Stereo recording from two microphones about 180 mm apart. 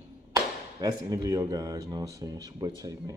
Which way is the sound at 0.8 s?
20° right (ahead or behind).